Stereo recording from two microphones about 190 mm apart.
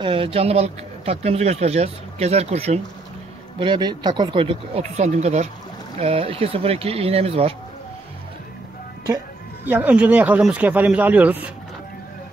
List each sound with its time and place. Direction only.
0.0 s speech: 30° right (ahead or behind)
9.7 s speech: 10° right (ahead or behind)